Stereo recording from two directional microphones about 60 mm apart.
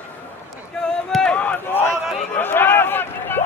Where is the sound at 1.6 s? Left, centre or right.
Left.